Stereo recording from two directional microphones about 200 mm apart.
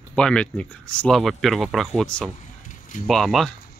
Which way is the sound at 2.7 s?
40° left (ahead or behind).